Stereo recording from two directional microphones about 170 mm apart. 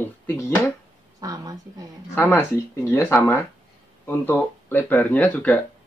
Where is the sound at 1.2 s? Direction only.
20° right (ahead or behind).